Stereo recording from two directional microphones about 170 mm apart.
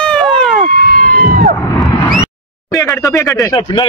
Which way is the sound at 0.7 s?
55° right (ahead or behind).